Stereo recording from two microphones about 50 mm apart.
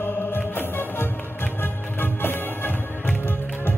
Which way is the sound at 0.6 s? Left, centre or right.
Left.